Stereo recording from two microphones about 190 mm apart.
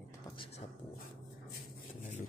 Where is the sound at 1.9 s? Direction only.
40° left (ahead or behind).